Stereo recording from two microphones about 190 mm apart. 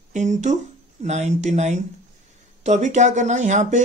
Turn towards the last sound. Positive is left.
turn(degrees=-40)  # may be behind; listen again after turning